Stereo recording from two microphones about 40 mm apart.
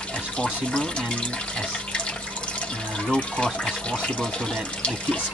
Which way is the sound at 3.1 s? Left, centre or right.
Centre.